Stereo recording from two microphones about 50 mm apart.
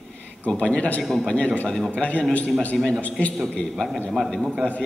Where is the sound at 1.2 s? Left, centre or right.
Left.